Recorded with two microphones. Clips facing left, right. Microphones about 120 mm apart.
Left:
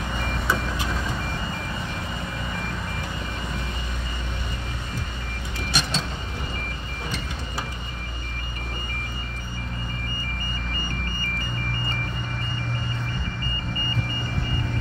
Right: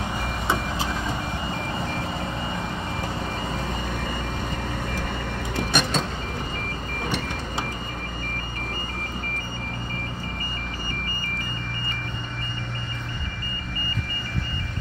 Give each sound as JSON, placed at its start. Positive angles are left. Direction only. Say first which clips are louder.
{"t": 5.7, "sound": "train", "louder": "right 3 dB", "side_deg": -55}